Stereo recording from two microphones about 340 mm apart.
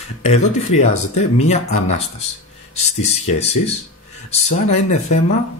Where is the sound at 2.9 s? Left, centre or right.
Centre.